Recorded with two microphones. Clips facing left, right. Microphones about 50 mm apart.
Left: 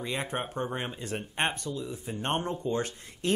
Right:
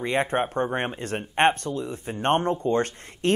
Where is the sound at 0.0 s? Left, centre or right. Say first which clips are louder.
Right 9 dB; right.